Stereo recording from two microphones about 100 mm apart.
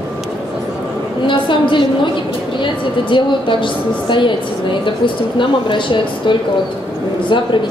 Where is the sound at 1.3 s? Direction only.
55° left (ahead or behind).